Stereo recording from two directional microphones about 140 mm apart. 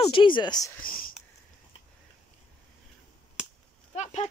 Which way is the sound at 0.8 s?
90° left.